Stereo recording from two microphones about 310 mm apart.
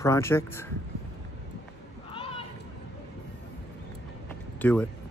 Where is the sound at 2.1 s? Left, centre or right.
Centre.